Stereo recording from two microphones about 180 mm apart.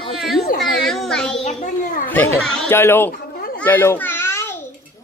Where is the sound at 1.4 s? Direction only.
40° left (ahead or behind).